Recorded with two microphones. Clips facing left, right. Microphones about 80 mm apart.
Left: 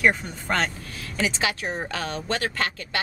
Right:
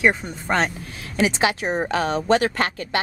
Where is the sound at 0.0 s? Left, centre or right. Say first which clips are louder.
Right 2 dB; centre.